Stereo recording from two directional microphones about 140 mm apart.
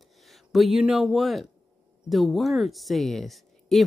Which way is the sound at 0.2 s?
Centre (ahead or behind).